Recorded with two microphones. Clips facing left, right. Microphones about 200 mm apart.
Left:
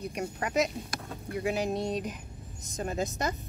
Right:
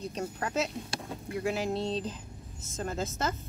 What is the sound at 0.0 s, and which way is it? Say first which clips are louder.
A woman's voice: left 1 dB; 10° left (ahead or behind).